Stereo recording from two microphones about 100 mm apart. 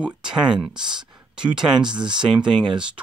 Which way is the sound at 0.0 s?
10° right (ahead or behind).